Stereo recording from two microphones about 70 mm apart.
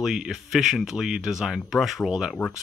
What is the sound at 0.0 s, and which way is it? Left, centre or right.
Speech, centre.